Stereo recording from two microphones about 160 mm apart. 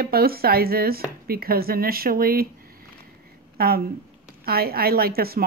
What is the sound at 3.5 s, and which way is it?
A woman's voice, 70° right (ahead or behind).